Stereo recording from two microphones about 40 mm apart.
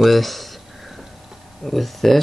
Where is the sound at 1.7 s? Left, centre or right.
Centre.